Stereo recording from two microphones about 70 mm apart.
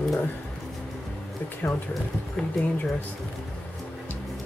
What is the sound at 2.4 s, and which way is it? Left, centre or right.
Speech, centre.